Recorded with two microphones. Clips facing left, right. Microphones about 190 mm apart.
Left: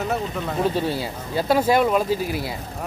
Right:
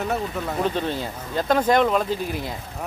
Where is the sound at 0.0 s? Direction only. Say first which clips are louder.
Even; 5° left (ahead or behind).